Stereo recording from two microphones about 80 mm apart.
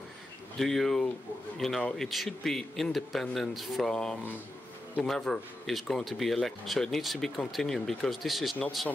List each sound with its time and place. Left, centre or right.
0.6 s speech: centre